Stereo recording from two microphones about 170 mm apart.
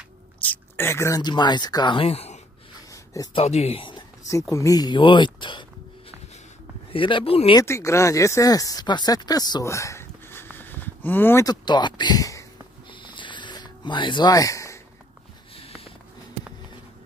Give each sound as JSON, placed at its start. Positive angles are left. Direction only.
{"t": 0.4, "sound": "speech", "side_deg": 10}
{"t": 2.9, "sound": "a sound", "side_deg": 20}
{"t": 3.3, "sound": "speech", "side_deg": 40}
{"t": 4.3, "sound": "speech", "side_deg": 20}
{"t": 6.9, "sound": "speech", "side_deg": 30}
{"t": 7.6, "sound": "speech", "side_deg": 15}
{"t": 12.9, "sound": "a sound", "side_deg": 30}
{"t": 15.5, "sound": "sniff", "side_deg": 35}